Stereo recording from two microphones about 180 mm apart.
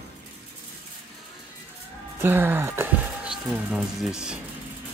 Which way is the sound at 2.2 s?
10° right (ahead or behind).